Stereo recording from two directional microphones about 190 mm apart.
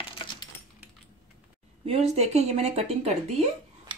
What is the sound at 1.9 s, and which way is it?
Speech, 35° right (ahead or behind).